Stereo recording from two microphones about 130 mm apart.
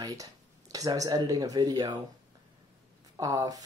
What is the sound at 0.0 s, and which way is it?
Speech, 30° right (ahead or behind).